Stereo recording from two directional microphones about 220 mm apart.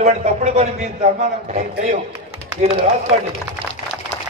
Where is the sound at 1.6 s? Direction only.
40° right (ahead or behind).